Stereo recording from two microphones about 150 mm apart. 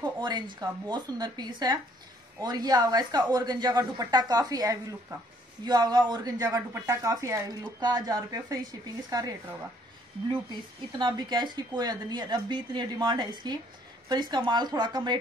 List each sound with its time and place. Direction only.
0.0 s a woman's voice: 30° right (ahead or behind)